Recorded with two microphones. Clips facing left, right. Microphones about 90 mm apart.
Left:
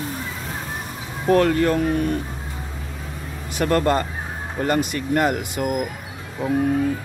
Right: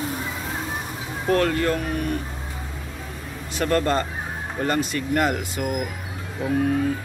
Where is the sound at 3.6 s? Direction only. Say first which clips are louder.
Left 2 dB; 15° left (ahead or behind).